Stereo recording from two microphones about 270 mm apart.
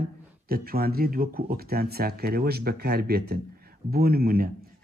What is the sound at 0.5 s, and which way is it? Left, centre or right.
Speech, right.